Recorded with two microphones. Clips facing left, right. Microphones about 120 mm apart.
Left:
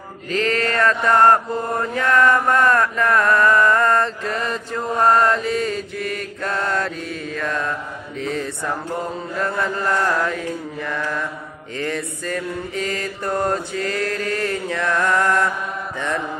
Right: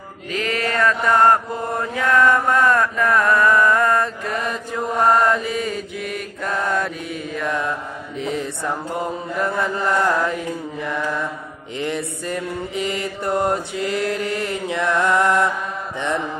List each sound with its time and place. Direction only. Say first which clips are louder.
0.3 s mantra: left 2 dB; 10° right (ahead or behind)